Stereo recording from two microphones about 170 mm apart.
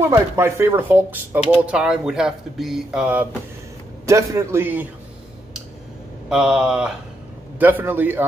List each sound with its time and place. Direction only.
0.0 s speech: 15° right (ahead or behind)
4.0 s speech: 20° right (ahead or behind)
6.2 s speech: 5° right (ahead or behind)